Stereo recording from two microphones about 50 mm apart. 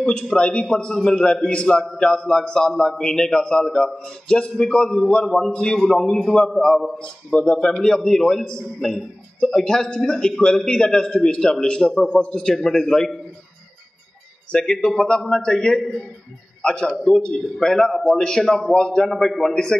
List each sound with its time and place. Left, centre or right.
0.4 s a man's voice: centre
7.0 s speech: left
7.8 s a man's voice: centre
14.5 s a man's voice: centre
16.9 s a man's voice: centre